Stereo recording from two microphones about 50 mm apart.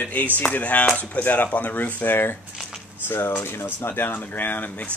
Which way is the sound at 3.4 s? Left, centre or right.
Left.